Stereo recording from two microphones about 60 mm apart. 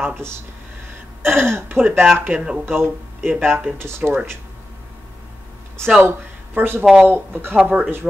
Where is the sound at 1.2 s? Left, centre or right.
Right.